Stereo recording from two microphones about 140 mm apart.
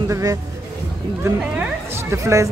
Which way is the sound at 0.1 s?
25° right (ahead or behind).